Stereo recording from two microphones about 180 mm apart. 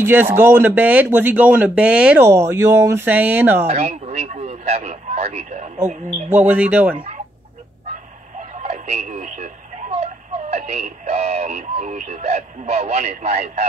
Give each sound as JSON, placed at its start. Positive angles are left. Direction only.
{"t": 0.0, "sound": "speech", "side_deg": -10}
{"t": 3.6, "sound": "speech", "side_deg": -35}
{"t": 6.3, "sound": "speech", "side_deg": -10}
{"t": 8.5, "sound": "radio", "side_deg": -40}